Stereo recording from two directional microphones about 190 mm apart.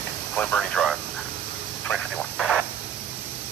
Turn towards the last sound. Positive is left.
turn(degrees=0)  # may be behind; listen again after turning